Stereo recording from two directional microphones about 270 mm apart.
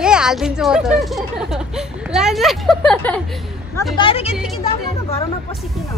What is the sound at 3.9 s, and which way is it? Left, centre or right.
Speech, centre.